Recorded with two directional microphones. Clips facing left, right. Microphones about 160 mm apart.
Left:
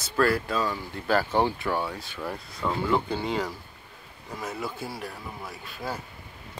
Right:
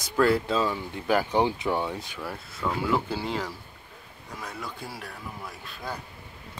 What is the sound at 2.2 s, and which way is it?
Speech, centre (ahead or behind).